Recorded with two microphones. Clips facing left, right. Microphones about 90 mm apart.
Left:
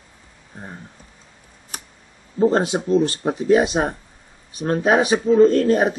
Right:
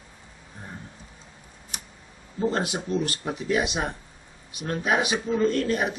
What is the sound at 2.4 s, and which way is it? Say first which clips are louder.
Speech: left 8 dB; 35° left (ahead or behind).